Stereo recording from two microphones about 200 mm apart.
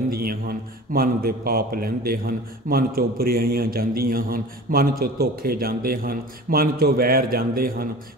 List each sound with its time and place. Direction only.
0.1 s a man's voice: 50° right (ahead or behind)